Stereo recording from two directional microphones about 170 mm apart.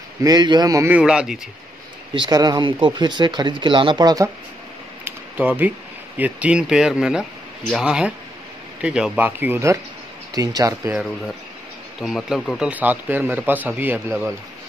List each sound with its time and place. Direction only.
0.2 s speech: 25° right (ahead or behind)
0.9 s speech: 5° right (ahead or behind)
2.1 s speech: 25° right (ahead or behind)
5.0 s a sound: 10° right (ahead or behind)
6.1 s a man's voice: 10° right (ahead or behind)
12.0 s a man's voice: centre (ahead or behind)